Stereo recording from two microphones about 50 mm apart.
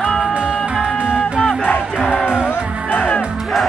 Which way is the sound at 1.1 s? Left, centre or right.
Centre.